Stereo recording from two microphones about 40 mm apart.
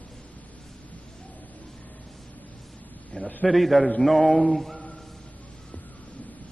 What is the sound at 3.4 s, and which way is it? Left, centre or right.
A man's voice, centre.